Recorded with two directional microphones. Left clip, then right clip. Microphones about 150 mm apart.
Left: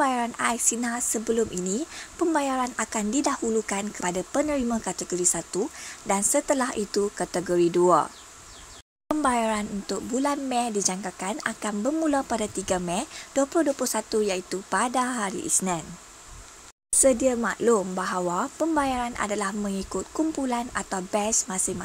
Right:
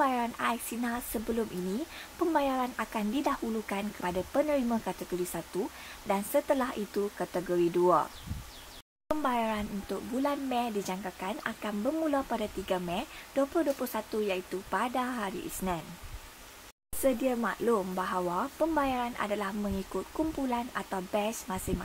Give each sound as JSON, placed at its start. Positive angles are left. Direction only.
{"t": 0.0, "sound": "speech", "side_deg": 25}
{"t": 17.0, "sound": "speech", "side_deg": 35}